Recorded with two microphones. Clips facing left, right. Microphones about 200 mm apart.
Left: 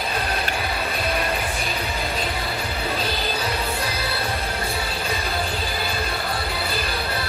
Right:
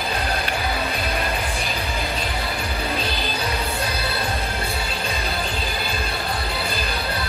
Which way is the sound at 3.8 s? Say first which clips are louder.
Right 1 dB; 30° left (ahead or behind).